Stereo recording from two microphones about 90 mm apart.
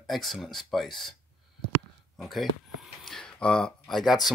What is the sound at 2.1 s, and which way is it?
Speech, centre (ahead or behind).